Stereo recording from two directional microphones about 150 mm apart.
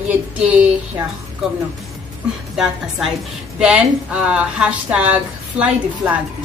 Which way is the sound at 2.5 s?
5° right (ahead or behind).